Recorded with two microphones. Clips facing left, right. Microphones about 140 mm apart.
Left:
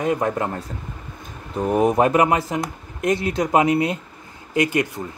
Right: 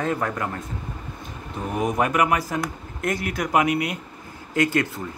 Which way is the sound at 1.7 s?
30° left (ahead or behind).